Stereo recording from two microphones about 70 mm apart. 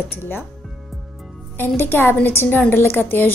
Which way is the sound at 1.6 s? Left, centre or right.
Left.